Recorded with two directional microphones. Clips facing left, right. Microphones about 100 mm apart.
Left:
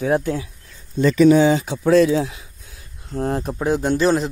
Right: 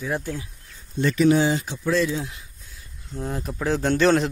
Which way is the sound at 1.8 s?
75° left (ahead or behind).